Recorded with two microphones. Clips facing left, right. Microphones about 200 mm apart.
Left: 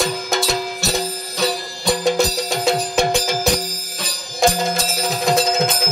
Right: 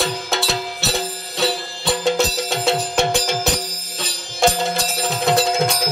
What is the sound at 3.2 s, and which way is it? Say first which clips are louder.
Music: left 2 dB; 5° left (ahead or behind).